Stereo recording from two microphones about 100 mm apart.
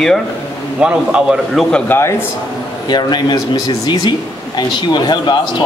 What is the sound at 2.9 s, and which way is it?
Speech, 45° left (ahead or behind).